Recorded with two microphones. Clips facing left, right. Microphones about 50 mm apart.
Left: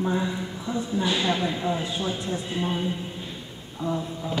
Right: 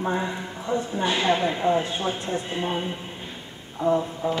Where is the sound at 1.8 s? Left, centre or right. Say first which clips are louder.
Right 1 dB; right.